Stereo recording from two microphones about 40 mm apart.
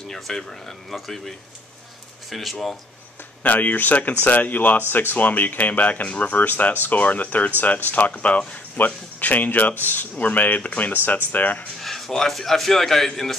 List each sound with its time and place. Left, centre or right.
0.1 s a man's voice: centre
3.4 s speech: left
6.4 s speech: left
8.7 s speech: left
11.8 s a man's voice: centre